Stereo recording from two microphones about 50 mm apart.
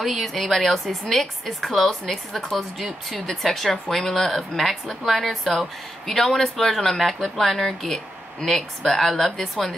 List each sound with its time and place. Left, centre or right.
0.0 s speech: centre